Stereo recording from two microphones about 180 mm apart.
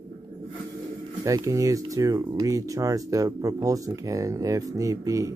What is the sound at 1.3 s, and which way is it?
Speech, 15° right (ahead or behind).